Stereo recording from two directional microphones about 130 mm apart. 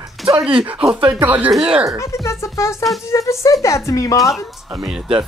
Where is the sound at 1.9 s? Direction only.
25° left (ahead or behind).